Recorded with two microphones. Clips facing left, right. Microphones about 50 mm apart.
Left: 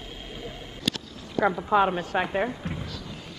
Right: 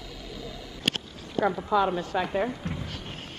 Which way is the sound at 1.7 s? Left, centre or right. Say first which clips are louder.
Left 2 dB; left.